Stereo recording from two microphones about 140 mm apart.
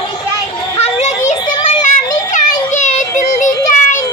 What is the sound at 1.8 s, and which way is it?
Children playing, 65° left (ahead or behind).